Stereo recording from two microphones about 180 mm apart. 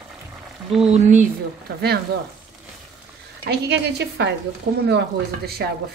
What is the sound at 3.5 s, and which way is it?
A woman's voice, 70° right (ahead or behind).